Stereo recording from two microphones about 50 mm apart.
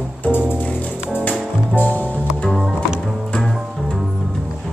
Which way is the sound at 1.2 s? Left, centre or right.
Left.